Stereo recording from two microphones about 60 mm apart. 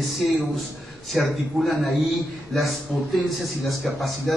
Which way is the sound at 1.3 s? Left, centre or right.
Centre.